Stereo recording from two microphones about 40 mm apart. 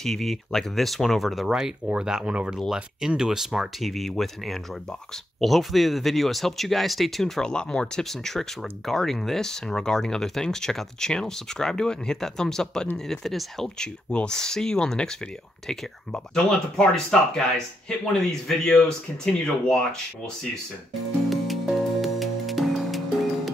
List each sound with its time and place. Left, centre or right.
0.0 s speech: centre
2.0 s speech: centre
3.8 s speech: centre
7.4 s speech: left
8.0 s speech: centre
13.7 s speech: left
18.6 s speech: centre
21.3 s music: centre